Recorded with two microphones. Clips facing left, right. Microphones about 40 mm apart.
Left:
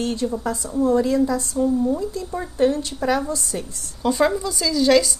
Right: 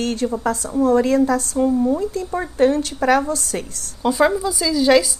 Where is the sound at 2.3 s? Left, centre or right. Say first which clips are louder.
Right 3 dB; right.